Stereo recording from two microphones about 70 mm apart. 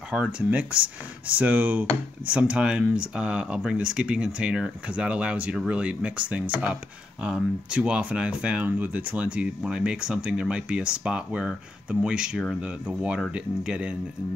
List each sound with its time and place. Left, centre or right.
0.1 s speech: centre